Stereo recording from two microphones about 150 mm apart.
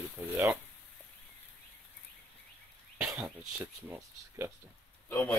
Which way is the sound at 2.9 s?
10° right (ahead or behind).